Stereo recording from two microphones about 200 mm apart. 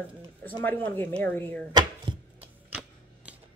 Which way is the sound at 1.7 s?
25° right (ahead or behind).